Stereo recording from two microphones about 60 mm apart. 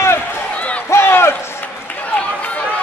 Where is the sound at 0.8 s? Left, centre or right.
Left.